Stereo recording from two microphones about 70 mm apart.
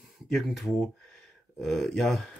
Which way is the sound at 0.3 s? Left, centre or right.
Centre.